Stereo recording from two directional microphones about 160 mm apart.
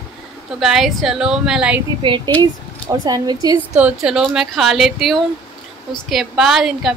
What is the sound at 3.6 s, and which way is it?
A woman's voice, 10° right (ahead or behind).